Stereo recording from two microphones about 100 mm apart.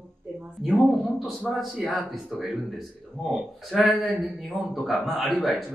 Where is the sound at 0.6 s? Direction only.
Centre (ahead or behind).